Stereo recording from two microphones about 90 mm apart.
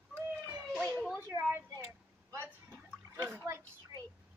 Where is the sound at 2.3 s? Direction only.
30° right (ahead or behind).